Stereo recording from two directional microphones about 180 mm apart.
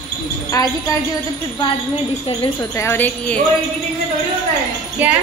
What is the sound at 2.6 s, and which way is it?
Speech, 15° left (ahead or behind).